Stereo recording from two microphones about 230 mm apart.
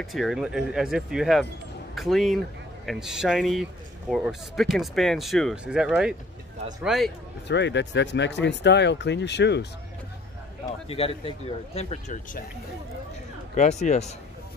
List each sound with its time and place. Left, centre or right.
0.0 s speech: centre
7.4 s speech: left
10.6 s speech: left
13.6 s speech: left